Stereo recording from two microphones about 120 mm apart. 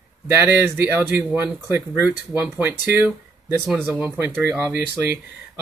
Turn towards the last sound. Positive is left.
turn(degrees=-15)  # may be behind; listen again after turning